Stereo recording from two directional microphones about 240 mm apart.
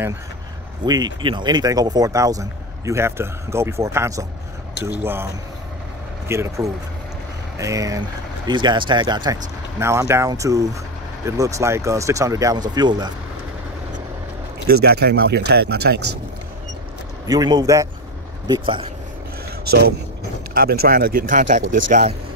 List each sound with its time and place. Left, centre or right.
0.8 s speech: centre
14.7 s speech: right
17.3 s speech: centre
20.5 s speech: right